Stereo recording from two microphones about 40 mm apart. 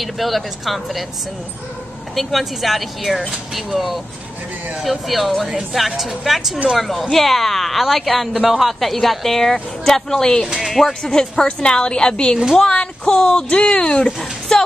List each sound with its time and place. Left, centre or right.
0.0 s speech: centre
2.1 s speech: centre; by 14.6 s left